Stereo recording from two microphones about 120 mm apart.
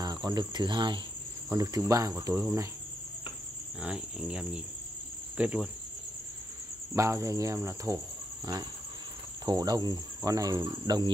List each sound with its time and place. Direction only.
0.0 s cricket: 35° right (ahead or behind)
1.5 s cricket: 25° right (ahead or behind)
3.8 s speech: 10° right (ahead or behind)
6.9 s cricket: 25° right (ahead or behind)
9.5 s cricket: 35° right (ahead or behind)